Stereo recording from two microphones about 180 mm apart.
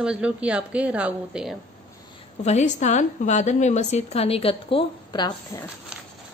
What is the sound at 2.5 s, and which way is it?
A woman's voice, 40° left (ahead or behind).